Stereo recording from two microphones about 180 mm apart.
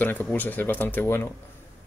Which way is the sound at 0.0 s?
10° left (ahead or behind).